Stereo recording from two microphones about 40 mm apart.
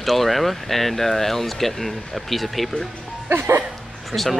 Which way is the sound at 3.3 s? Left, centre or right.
Right.